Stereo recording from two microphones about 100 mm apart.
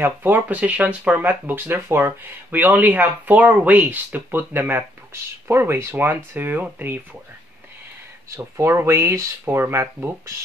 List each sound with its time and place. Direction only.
0.0 s speech: 20° right (ahead or behind)
8.4 s speech: 30° right (ahead or behind)